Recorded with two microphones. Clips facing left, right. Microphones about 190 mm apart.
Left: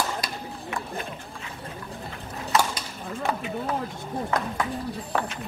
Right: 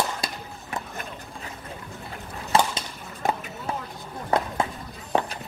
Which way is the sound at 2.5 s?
30° right (ahead or behind).